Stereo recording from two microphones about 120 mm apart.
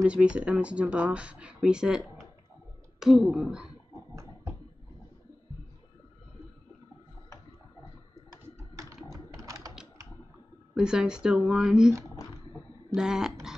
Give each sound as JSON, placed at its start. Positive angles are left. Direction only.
{"t": 0.0, "sound": "speech", "side_deg": -10}
{"t": 9.1, "sound": "typing", "side_deg": 40}
{"t": 10.7, "sound": "speech", "side_deg": -5}
{"t": 12.9, "sound": "speech", "side_deg": -5}